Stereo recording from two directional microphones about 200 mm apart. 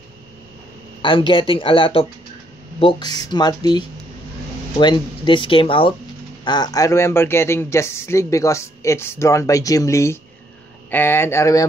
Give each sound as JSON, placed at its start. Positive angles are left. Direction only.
{"t": 1.0, "sound": "speech", "side_deg": 25}